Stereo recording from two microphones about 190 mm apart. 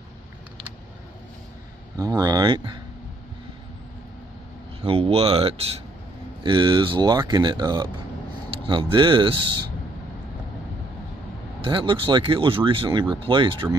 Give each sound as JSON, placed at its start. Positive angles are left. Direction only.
{"t": 2.0, "sound": "speech", "side_deg": -20}
{"t": 4.8, "sound": "speech", "side_deg": -30}
{"t": 11.6, "sound": "speech", "side_deg": -25}